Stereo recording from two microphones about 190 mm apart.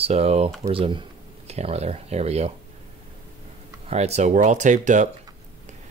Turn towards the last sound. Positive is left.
turn(degrees=-40)  # may be behind; listen again after turning